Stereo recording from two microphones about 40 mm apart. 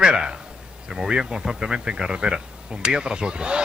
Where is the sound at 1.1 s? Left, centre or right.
Right.